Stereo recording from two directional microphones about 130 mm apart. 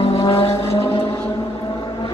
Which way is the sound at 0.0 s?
45° left (ahead or behind).